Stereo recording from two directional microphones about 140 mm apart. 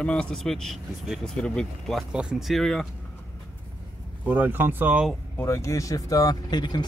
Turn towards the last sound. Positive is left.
turn(degrees=30)  # may be behind; listen again after turning